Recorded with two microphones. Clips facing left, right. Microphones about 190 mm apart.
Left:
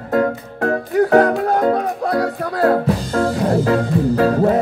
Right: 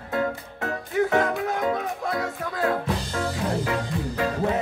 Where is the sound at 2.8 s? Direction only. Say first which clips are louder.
Left 9 dB; 55° left (ahead or behind).